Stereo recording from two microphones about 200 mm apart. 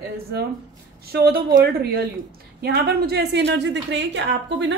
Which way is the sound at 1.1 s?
50° right (ahead or behind).